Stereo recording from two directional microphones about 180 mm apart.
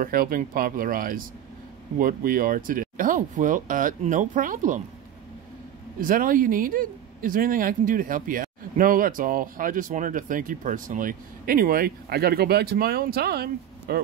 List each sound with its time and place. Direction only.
0.0 s speech: 55° right (ahead or behind)
5.9 s speech: 50° right (ahead or behind)